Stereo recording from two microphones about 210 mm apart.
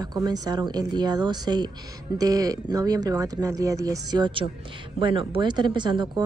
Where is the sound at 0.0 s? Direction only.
20° right (ahead or behind).